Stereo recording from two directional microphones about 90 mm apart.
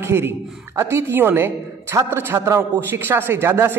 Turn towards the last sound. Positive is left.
turn(degrees=-25)  # may be behind; listen again after turning